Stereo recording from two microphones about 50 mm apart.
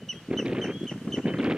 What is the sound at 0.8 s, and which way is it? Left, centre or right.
Chicken, centre.